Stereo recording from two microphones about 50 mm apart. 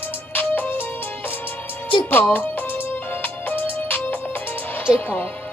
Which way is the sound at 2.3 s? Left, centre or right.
Left.